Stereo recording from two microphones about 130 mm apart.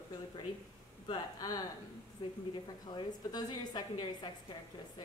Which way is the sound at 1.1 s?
30° left (ahead or behind).